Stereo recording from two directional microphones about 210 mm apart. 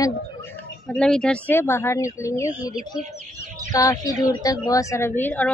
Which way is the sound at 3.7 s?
15° left (ahead or behind).